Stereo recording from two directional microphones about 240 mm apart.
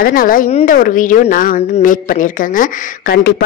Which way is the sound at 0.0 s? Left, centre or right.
Left.